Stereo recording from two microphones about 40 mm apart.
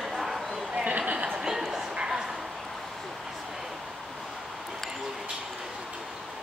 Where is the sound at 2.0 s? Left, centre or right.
Centre.